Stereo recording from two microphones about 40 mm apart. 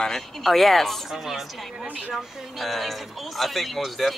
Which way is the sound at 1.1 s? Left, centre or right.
Centre.